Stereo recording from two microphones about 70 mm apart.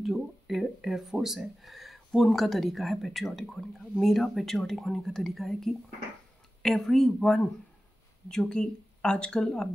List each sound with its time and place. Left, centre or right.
0.0 s speech: centre